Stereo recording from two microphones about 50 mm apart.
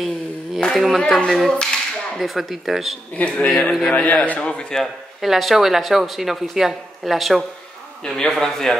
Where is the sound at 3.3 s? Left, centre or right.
Centre.